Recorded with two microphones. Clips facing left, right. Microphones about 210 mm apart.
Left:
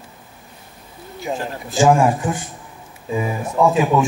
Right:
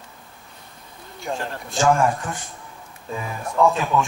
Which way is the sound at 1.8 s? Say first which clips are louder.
Left 4 dB; 15° left (ahead or behind).